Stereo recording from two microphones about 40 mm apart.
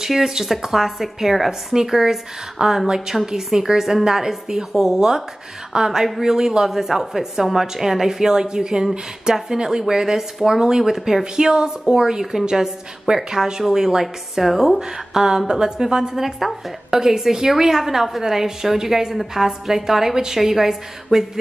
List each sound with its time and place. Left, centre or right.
0.0 s a woman's voice: centre
3.1 s a woman's voice: centre
3.5 s a woman's voice: centre
11.3 s a woman's voice: centre
14.8 s a woman's voice: centre